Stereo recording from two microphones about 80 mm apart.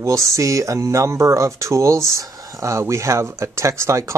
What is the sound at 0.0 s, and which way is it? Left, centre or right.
Speech, right.